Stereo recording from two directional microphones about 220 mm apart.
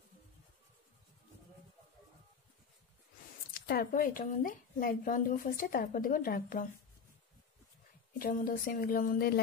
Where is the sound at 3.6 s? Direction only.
40° left (ahead or behind).